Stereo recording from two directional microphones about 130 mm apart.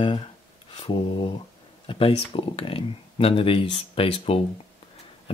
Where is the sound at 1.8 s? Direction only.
45° left (ahead or behind).